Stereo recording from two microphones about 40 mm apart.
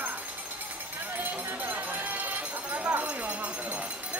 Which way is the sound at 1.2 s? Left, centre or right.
Right.